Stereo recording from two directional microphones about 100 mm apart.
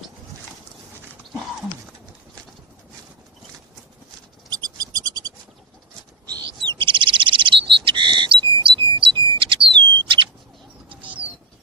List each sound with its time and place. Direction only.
4.5 s bird: 45° right (ahead or behind)
9.4 s chirp tone: 55° right (ahead or behind)
10.0 s bird: 55° right (ahead or behind)
10.9 s bird: 15° right (ahead or behind)